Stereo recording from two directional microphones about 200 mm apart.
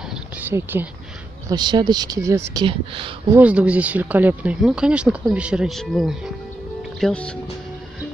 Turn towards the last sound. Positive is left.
turn(degrees=5)  # may be behind; listen again after turning